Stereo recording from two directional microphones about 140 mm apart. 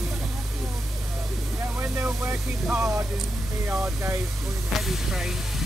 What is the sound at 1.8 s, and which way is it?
Vehicle, 15° right (ahead or behind).